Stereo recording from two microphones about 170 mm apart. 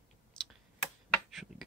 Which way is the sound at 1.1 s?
Centre (ahead or behind).